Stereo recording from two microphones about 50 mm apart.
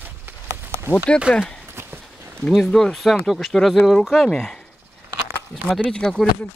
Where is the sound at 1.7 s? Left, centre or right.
Right.